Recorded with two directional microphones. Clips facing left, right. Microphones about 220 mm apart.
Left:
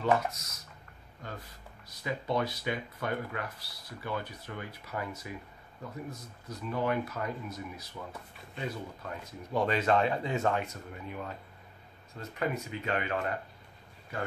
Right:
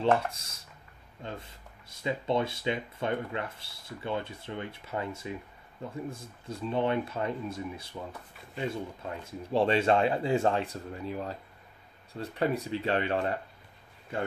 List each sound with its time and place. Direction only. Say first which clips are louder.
0.2 s speech: even; 30° right (ahead or behind)